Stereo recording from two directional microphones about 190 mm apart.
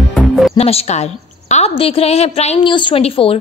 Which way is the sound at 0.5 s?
35° left (ahead or behind).